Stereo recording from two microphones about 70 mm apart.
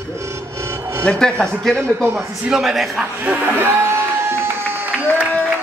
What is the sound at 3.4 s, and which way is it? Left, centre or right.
Music, right.